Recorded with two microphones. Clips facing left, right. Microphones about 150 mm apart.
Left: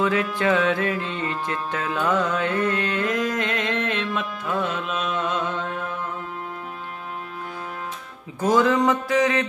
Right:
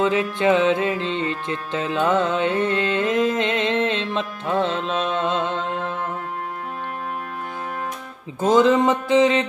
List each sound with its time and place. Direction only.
0.0 s music: 20° right (ahead or behind)
8.4 s music: 25° right (ahead or behind)